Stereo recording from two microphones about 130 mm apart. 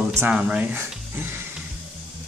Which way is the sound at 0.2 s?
10° right (ahead or behind).